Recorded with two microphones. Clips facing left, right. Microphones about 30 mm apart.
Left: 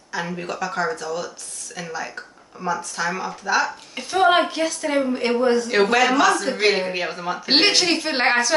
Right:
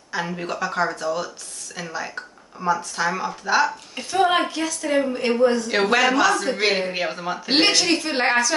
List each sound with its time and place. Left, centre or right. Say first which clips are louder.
0.1 s speech: right 1 dB; centre
4.1 s a woman's voice: left 2 dB; centre
5.7 s a woman's voice: left 1 dB; centre